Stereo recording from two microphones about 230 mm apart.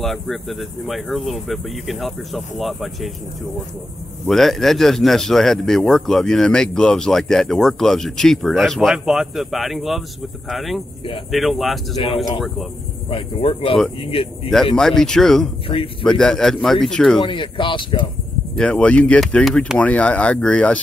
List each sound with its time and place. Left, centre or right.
0.0 s speech: centre
4.3 s speech: centre
13.1 s speech: left
14.8 s speech: centre
15.7 s speech: left
16.1 s speech: centre
17.2 s speech: left
18.6 s speech: centre